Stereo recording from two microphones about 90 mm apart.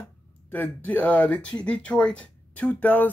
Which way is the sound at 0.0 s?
20° left (ahead or behind).